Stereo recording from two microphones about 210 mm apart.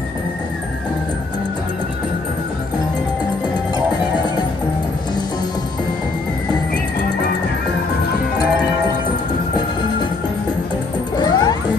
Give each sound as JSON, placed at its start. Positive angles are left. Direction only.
{"t": 11.1, "sound": "music", "side_deg": 20}